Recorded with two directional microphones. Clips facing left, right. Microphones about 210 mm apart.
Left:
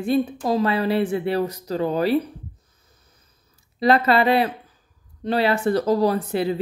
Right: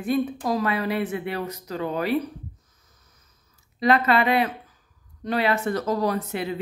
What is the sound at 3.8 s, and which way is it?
Speech, 35° left (ahead or behind).